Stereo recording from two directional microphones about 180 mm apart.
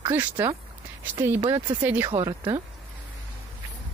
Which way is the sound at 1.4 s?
25° right (ahead or behind).